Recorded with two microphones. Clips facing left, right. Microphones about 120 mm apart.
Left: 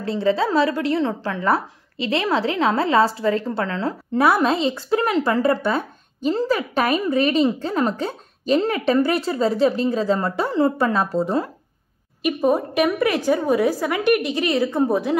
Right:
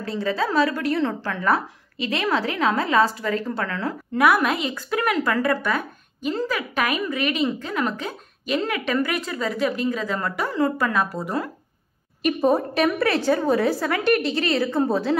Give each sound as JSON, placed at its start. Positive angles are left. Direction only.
{"t": 0.0, "sound": "speech", "side_deg": 25}
{"t": 12.4, "sound": "a woman's voice", "side_deg": 10}